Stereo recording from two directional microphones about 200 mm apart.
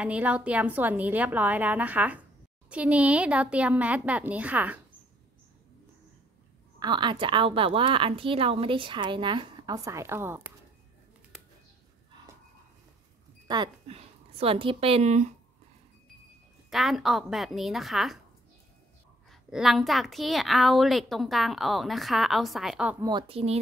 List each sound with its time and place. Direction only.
0.0 s a woman's voice: 5° right (ahead or behind)
6.8 s a woman's voice: 25° right (ahead or behind)
13.5 s a woman's voice: 20° right (ahead or behind)
16.7 s a woman's voice: centre (ahead or behind)
19.5 s a woman's voice: centre (ahead or behind)
23.0 s a woman's voice: 25° right (ahead or behind)